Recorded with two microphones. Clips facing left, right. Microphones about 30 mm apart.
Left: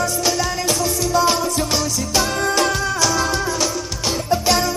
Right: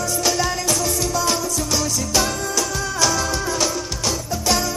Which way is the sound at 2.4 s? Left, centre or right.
Left.